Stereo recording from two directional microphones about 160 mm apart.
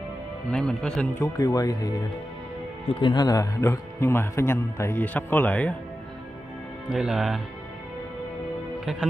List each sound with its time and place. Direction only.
0.5 s speech: 5° left (ahead or behind)
1.2 s speech: 20° left (ahead or behind)
6.9 s speech: 5° right (ahead or behind)